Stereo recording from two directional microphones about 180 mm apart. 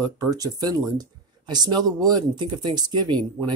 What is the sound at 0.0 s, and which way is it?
Speech, 20° right (ahead or behind).